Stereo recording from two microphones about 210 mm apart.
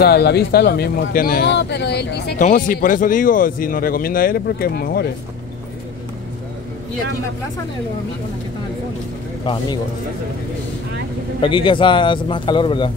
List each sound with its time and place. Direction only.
0.0 s speech: 50° left (ahead or behind)
2.4 s speech: 40° left (ahead or behind)
9.4 s speech: 25° left (ahead or behind)
11.4 s speech: 25° left (ahead or behind)